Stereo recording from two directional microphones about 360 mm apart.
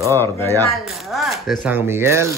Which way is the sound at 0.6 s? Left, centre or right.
Centre.